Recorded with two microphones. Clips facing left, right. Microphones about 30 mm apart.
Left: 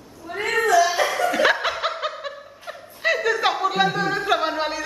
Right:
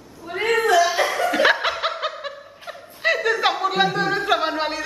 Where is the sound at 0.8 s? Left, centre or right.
Centre.